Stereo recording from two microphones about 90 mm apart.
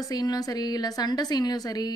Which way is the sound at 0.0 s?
45° left (ahead or behind).